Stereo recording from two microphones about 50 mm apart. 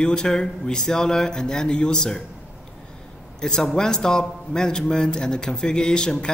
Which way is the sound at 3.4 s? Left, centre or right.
Centre.